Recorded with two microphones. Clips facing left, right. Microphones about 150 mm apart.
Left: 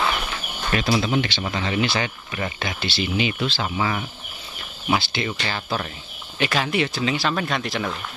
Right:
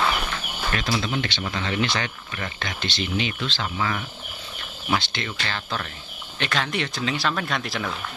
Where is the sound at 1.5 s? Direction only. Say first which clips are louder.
Left 2 dB; 5° left (ahead or behind).